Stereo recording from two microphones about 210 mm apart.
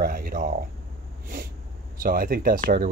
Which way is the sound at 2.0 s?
45° right (ahead or behind).